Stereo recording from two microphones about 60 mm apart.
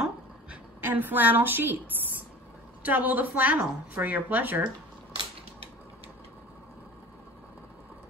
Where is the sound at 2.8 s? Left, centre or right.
Right.